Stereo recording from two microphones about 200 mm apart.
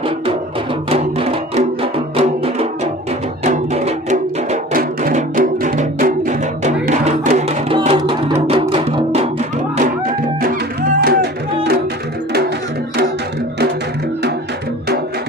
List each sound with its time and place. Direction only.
0.8 s music: 30° right (ahead or behind)
8.0 s music: 20° right (ahead or behind); by 9.8 s 35° right (ahead or behind)
11.0 s music: 55° right (ahead or behind)